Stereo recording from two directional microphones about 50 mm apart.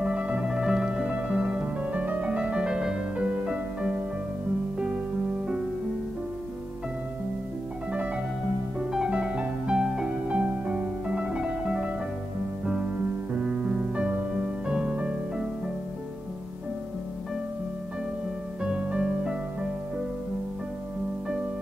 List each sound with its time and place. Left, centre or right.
0.0 s music: right
9.1 s music: right
18.6 s music: right